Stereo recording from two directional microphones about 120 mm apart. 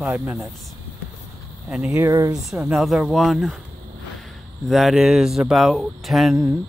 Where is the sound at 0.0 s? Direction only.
10° right (ahead or behind).